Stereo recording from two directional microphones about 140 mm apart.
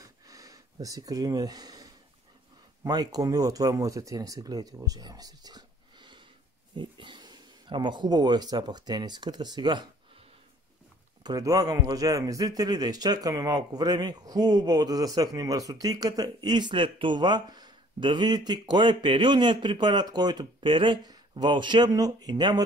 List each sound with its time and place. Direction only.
0.0 s sniff: 25° right (ahead or behind)
2.8 s a man's voice: 30° right (ahead or behind)
11.2 s a man's voice: 25° right (ahead or behind)